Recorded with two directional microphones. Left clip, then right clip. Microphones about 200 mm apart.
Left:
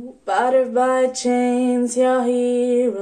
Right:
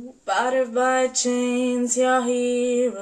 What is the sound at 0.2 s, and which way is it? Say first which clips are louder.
Female singing: left 4 dB; 20° left (ahead or behind).